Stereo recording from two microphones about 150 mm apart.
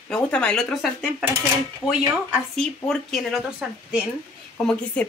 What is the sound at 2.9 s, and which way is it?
Speech, centre (ahead or behind).